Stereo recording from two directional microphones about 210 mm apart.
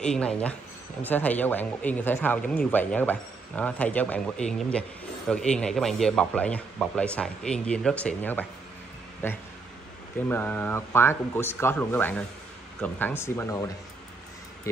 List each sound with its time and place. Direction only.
0.0 s speech: 5° left (ahead or behind)
10.2 s speech: 10° left (ahead or behind)